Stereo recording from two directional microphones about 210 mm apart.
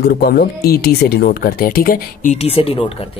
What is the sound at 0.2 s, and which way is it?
Speech, 45° left (ahead or behind).